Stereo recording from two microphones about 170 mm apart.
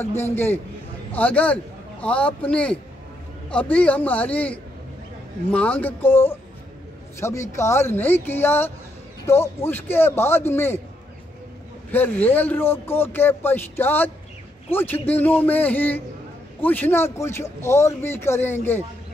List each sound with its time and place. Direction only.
0.0 s a man's voice: 15° left (ahead or behind)
11.9 s a man's voice: 10° left (ahead or behind)